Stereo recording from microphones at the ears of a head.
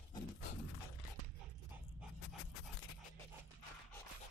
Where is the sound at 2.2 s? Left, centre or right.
Left.